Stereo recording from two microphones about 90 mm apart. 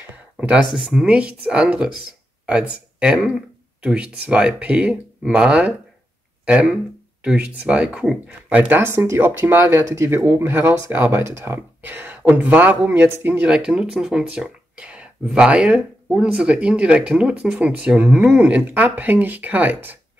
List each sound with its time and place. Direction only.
0.7 s speech: 5° right (ahead or behind); by 20.0 s 20° right (ahead or behind)